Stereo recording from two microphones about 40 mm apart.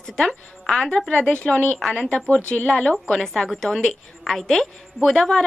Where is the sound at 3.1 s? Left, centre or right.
Centre.